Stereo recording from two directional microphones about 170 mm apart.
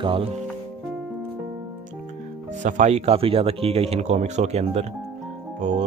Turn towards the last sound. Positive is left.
turn(degrees=-45)  # may be behind; listen again after turning